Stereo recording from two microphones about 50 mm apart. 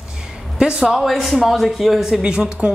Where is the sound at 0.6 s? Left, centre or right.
Right.